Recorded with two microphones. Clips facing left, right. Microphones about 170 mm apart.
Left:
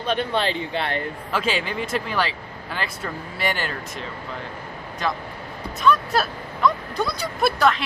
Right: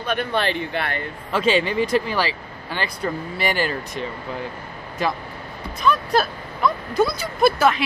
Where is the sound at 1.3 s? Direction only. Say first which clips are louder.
Right 6 dB; centre (ahead or behind).